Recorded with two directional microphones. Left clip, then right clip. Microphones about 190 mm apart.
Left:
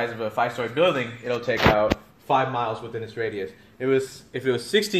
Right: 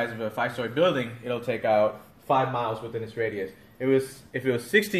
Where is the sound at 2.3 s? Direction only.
30° left (ahead or behind).